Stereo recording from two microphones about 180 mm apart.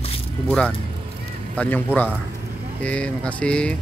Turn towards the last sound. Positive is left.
turn(degrees=5)  # may be behind; listen again after turning